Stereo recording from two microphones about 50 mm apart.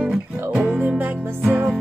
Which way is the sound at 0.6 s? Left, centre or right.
Right.